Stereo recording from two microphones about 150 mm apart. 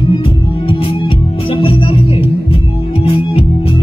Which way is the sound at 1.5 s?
40° left (ahead or behind).